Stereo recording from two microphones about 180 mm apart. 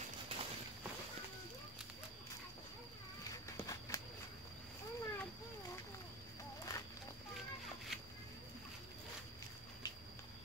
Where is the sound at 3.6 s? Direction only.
20° left (ahead or behind).